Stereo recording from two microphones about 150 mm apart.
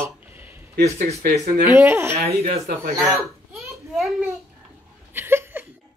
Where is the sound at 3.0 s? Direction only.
Centre (ahead or behind).